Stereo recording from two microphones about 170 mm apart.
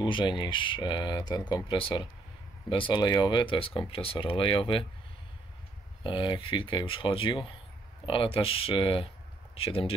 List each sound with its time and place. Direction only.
0.0 s speech: 30° left (ahead or behind)
6.0 s speech: 30° left (ahead or behind)